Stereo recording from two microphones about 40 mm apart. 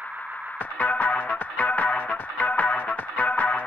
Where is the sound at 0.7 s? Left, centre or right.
Left.